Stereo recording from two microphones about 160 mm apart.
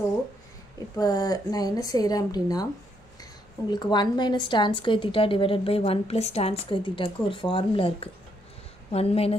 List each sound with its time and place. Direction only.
0.9 s speech: 25° left (ahead or behind)
3.7 s a woman's voice: 25° left (ahead or behind)